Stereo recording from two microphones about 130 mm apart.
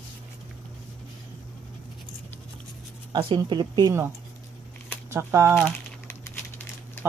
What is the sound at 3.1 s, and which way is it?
Speech, 35° right (ahead or behind).